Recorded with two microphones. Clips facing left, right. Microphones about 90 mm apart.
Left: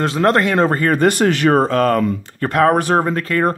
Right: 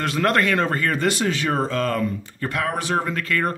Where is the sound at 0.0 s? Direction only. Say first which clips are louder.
Left 5 dB; 30° left (ahead or behind).